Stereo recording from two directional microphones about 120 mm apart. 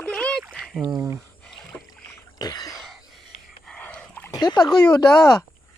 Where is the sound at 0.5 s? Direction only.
Centre (ahead or behind).